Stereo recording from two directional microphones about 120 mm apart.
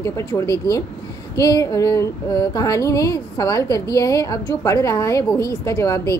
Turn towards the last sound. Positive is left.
turn(degrees=25)  # may be behind; listen again after turning